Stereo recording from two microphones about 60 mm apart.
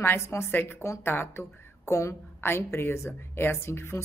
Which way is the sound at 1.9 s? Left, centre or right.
Left.